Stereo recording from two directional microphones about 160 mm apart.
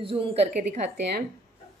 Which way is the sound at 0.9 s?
90° right.